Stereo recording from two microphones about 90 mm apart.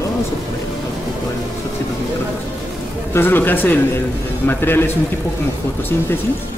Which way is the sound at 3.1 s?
25° left (ahead or behind).